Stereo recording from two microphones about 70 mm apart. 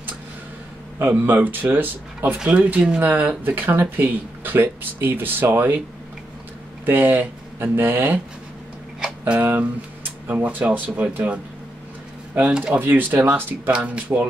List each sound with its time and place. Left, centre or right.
0.9 s speech: right
2.3 s speech: centre
6.9 s speech: right
9.3 s speech: right
12.4 s speech: centre
12.8 s speech: right